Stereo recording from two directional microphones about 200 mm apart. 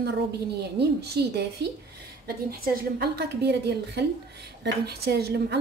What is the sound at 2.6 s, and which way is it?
A woman's voice, 50° right (ahead or behind).